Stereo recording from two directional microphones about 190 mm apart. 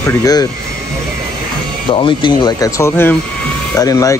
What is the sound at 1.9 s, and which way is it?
Speech, 25° left (ahead or behind).